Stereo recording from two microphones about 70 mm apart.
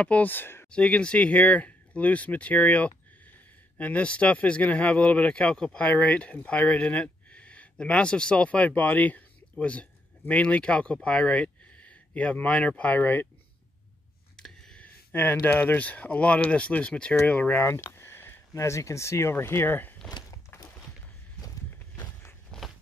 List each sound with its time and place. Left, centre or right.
0.0 s speech: left
0.7 s speech: centre
15.4 s speech: left
17.6 s a sound: left
18.5 s speech: left
20.2 s walk: left
22.5 s walk: centre